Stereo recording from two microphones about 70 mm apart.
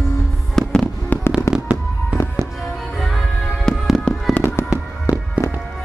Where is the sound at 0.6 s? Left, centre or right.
Centre.